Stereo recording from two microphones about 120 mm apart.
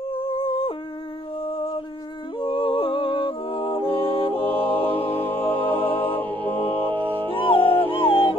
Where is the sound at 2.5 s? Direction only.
50° left (ahead or behind).